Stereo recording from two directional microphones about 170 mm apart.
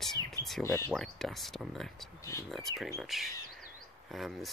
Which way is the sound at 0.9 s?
Centre (ahead or behind).